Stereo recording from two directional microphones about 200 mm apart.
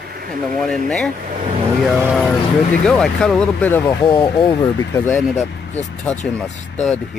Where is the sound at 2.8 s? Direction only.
5° left (ahead or behind).